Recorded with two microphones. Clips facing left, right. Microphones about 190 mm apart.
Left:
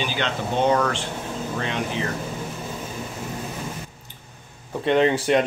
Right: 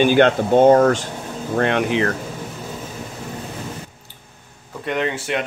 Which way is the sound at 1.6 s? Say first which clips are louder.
Right 11 dB; 65° right (ahead or behind).